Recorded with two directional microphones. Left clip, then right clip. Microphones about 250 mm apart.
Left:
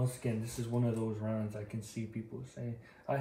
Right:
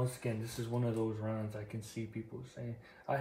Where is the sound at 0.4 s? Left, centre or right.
Centre.